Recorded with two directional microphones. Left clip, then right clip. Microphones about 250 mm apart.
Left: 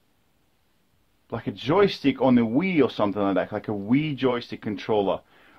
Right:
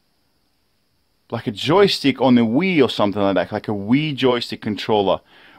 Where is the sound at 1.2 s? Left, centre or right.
Right.